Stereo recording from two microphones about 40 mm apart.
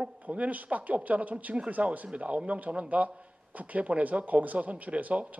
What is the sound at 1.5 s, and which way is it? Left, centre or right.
A man's voice, right.